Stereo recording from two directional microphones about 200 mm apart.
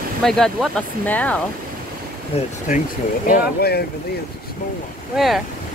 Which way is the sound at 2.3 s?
30° left (ahead or behind).